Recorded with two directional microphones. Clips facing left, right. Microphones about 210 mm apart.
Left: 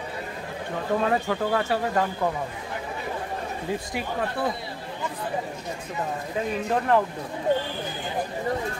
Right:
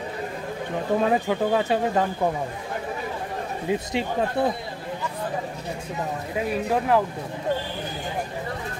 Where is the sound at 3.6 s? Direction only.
20° right (ahead or behind).